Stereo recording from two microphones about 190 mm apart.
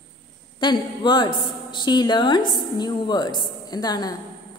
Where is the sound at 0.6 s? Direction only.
25° left (ahead or behind).